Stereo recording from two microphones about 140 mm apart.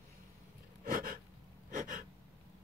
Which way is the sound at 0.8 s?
85° right.